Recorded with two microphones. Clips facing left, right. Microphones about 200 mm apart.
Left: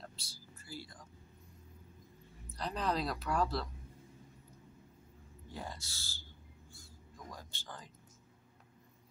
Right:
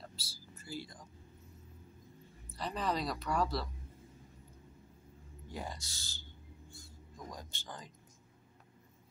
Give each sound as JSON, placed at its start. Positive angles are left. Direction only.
{"t": 0.0, "sound": "a sound", "side_deg": -5}
{"t": 0.7, "sound": "speech", "side_deg": -20}
{"t": 2.5, "sound": "a woman's voice", "side_deg": 0}
{"t": 5.5, "sound": "speech", "side_deg": -15}
{"t": 7.2, "sound": "speech", "side_deg": -20}